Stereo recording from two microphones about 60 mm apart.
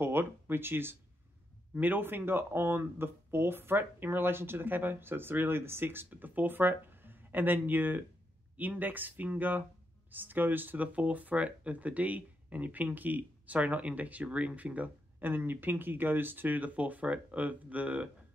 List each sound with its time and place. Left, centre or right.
0.0 s speech: right